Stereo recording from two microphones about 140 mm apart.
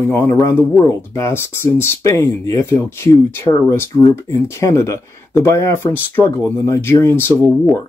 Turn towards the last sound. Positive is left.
turn(degrees=15)  # may be behind; listen again after turning